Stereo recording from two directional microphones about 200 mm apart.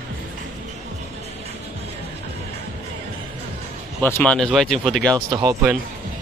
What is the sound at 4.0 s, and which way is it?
Speech, 10° left (ahead or behind).